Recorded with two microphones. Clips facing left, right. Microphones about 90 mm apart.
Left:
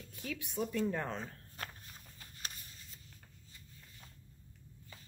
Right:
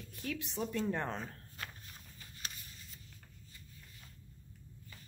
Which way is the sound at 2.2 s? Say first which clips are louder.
Even; 40° left (ahead or behind).